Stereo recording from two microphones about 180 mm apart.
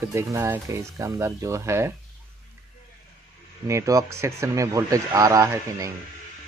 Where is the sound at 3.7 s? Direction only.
20° right (ahead or behind).